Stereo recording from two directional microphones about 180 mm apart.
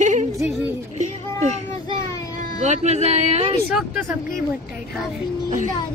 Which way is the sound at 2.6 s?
40° right (ahead or behind).